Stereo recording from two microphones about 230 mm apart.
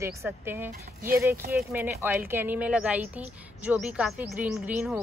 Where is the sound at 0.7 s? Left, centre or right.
Right.